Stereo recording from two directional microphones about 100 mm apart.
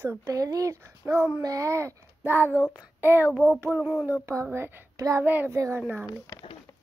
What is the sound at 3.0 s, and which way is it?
Child singing, 20° right (ahead or behind).